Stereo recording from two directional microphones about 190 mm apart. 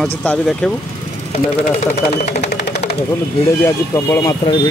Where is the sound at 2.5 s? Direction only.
60° left (ahead or behind).